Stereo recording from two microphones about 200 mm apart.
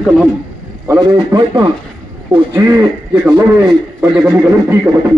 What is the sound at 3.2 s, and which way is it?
A man's voice, 5° right (ahead or behind).